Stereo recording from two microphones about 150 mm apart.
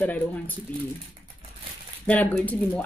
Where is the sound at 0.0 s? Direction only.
10° left (ahead or behind).